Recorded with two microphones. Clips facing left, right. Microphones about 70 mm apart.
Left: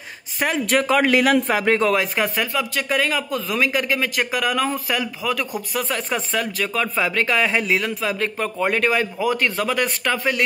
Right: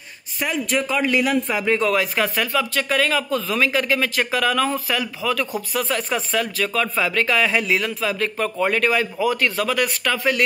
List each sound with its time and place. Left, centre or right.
0.4 s a man's voice: left
1.5 s a man's voice: left
1.9 s speech: centre
5.8 s speech: left